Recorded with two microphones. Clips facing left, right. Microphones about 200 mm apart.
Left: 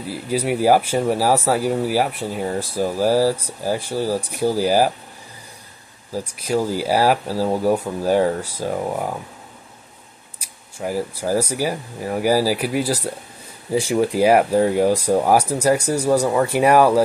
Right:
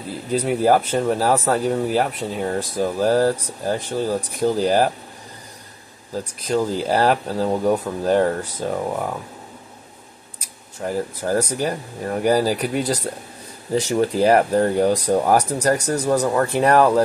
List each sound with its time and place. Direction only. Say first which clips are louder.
0.1 s speech: even; 10° left (ahead or behind)
6.1 s speech: even; 10° left (ahead or behind)
10.4 s speech: left 1 dB; 5° left (ahead or behind)